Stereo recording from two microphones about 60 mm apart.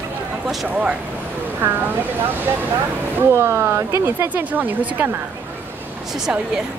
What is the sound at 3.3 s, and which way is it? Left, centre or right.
Speech, right.